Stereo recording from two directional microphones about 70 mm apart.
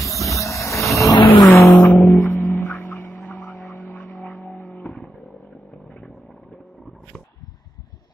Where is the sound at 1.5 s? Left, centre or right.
Left.